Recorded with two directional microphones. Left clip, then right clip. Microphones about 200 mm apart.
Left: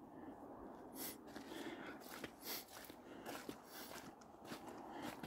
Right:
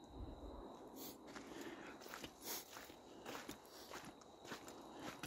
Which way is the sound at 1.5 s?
20° left (ahead or behind).